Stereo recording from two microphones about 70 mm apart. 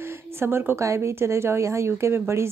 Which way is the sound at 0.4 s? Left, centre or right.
Right.